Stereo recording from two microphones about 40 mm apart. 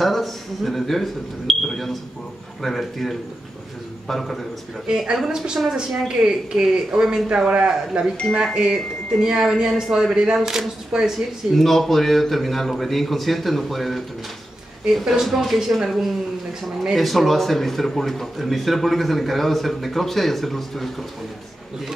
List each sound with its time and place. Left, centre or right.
0.0 s a man's voice: centre
4.8 s speech: centre
11.5 s a man's voice: centre